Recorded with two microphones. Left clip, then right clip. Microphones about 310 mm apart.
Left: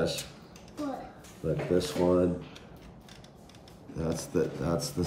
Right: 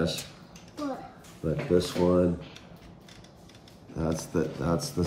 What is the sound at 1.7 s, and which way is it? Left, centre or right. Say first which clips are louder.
Speech: right 2 dB; centre.